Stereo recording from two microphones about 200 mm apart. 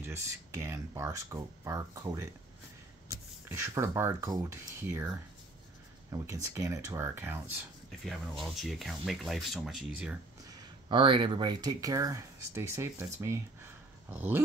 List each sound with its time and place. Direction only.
0.0 s speech: 15° right (ahead or behind)
8.0 s speech: centre (ahead or behind)
10.4 s speech: 20° right (ahead or behind)